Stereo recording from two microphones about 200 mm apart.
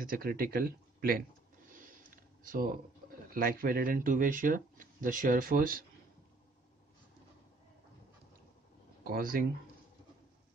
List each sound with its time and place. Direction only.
0.0 s speech: 45° right (ahead or behind)
1.7 s a sound: 40° right (ahead or behind)
3.3 s speech: 45° right (ahead or behind)
9.0 s speech: 45° right (ahead or behind)